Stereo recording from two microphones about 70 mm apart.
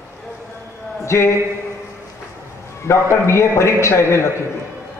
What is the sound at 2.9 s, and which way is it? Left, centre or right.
A man's voice, left.